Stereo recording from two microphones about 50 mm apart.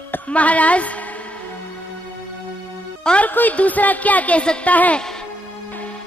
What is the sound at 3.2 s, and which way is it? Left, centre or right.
A woman's voice, left.